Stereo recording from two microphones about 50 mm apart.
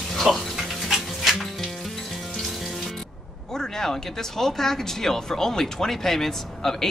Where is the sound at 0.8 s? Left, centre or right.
Centre.